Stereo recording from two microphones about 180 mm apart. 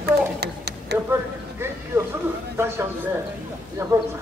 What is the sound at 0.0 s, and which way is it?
Tick-tock, 65° right (ahead or behind).